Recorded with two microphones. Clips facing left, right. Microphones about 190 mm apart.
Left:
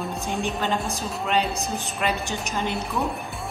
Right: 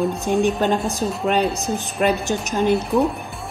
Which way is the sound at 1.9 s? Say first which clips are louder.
Right 8 dB; 50° right (ahead or behind).